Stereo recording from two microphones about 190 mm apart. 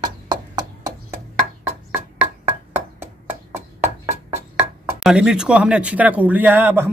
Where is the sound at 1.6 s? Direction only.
10° right (ahead or behind).